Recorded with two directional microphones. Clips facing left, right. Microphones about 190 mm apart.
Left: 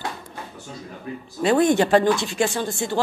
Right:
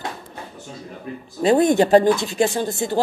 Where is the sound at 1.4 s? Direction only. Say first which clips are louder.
Right 2 dB; 40° right (ahead or behind).